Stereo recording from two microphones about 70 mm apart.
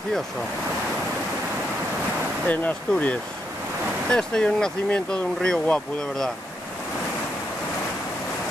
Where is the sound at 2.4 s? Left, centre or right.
Left.